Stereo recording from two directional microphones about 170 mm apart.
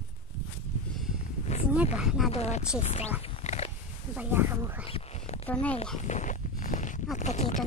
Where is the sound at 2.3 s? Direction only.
40° left (ahead or behind).